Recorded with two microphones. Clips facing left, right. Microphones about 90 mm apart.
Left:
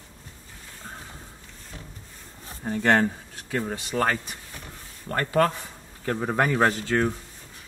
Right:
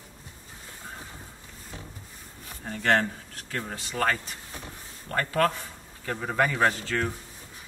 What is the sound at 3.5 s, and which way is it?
A man's voice, 15° left (ahead or behind).